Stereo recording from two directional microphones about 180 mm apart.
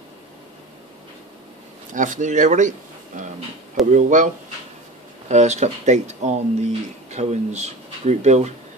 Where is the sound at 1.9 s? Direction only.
45° right (ahead or behind).